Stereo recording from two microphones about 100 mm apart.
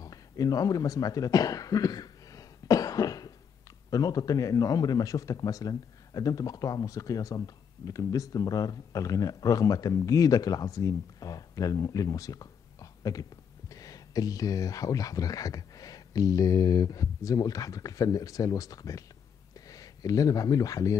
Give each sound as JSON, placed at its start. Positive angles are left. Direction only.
{"t": 0.0, "sound": "cough", "side_deg": 40}
{"t": 3.9, "sound": "speech", "side_deg": 35}